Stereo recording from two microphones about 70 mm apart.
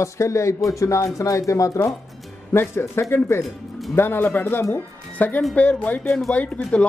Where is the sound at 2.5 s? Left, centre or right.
Left.